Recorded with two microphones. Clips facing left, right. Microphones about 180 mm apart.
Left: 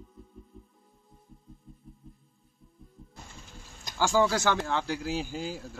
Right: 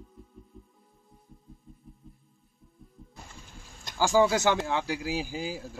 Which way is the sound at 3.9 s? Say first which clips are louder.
Right 2 dB; 15° right (ahead or behind).